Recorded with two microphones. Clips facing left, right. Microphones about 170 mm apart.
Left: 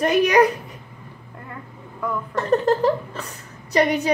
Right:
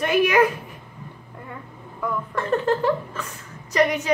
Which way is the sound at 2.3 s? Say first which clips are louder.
Left 4 dB; 40° left (ahead or behind).